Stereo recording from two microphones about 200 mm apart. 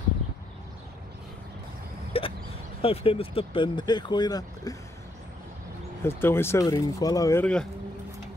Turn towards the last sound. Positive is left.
turn(degrees=5)  # may be behind; listen again after turning